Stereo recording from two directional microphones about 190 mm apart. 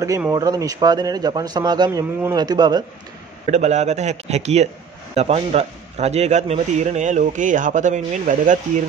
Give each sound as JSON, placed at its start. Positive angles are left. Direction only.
{"t": 0.3, "sound": "a man's voice", "side_deg": -20}
{"t": 3.5, "sound": "a man's voice", "side_deg": -35}